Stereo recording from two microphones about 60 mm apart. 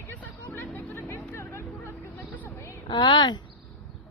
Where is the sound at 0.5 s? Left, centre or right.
Left.